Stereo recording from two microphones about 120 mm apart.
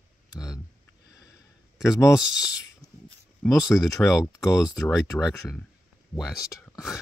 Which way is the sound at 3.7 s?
Centre (ahead or behind).